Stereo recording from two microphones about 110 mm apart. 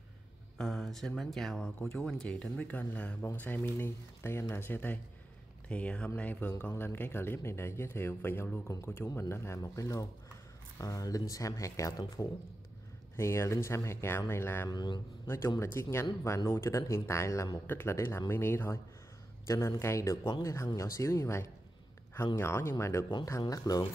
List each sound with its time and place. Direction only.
0.6 s speech: centre (ahead or behind); by 11.9 s 30° left (ahead or behind)
12.2 s speech: 40° left (ahead or behind)
13.1 s speech: 25° left (ahead or behind)
14.7 s speech: 40° left (ahead or behind)
15.2 s speech: 25° left (ahead or behind)
23.4 s speech: 35° left (ahead or behind)